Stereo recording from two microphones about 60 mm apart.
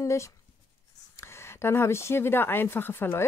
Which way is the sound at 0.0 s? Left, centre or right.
Left.